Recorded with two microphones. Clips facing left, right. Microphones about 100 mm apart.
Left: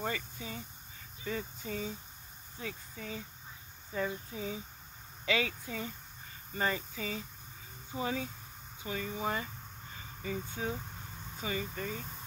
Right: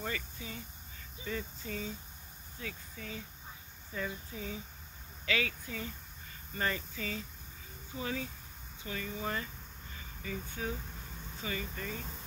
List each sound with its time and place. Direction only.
0.0 s speech: 25° left (ahead or behind)